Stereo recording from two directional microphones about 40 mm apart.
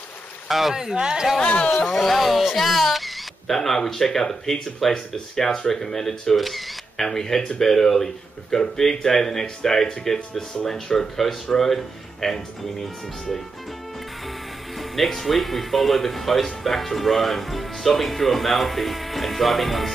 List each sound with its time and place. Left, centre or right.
0.5 s speech: centre
1.4 s speech: left
2.0 s speech: centre
14.8 s speech: centre